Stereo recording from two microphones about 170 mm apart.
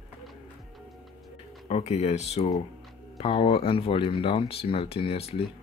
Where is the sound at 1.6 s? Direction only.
40° left (ahead or behind).